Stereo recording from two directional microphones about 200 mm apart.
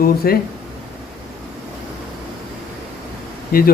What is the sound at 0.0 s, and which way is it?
Speech, 50° left (ahead or behind).